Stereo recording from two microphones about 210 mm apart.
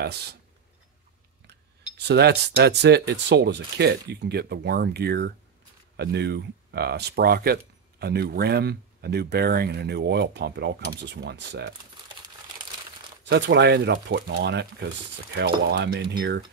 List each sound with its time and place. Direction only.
0.0 s speech: 50° right (ahead or behind)
2.0 s speech: 50° right (ahead or behind)
13.2 s speech: 55° right (ahead or behind)